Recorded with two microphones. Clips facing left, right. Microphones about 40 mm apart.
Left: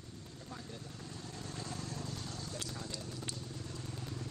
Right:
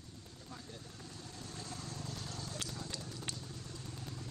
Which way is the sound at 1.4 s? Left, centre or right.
Left.